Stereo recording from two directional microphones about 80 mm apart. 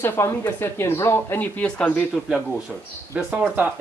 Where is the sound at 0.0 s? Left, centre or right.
Left.